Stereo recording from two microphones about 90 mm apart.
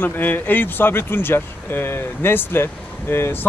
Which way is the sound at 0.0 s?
20° left (ahead or behind).